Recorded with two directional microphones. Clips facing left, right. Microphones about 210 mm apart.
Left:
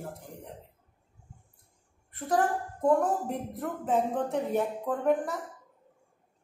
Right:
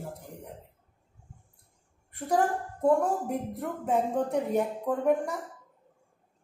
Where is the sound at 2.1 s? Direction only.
10° right (ahead or behind).